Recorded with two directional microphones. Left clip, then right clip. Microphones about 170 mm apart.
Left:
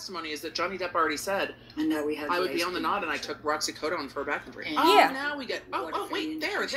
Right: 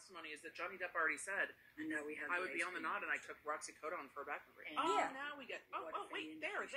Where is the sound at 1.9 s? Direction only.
Centre (ahead or behind).